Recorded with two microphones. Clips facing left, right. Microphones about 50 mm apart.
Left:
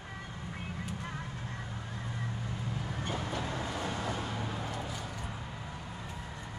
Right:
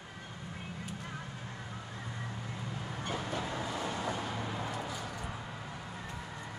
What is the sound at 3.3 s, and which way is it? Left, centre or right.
Vehicle, centre.